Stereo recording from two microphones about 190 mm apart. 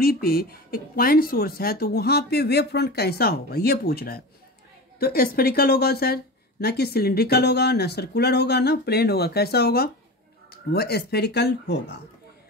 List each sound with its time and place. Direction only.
0.0 s speech: 50° left (ahead or behind)